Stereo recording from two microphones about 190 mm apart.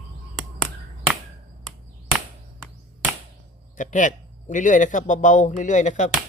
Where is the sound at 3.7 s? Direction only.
40° left (ahead or behind).